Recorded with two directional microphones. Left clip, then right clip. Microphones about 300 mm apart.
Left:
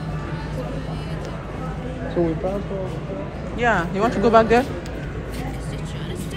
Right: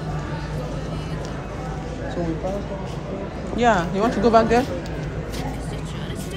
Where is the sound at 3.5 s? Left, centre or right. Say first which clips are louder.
Right 1 dB; centre.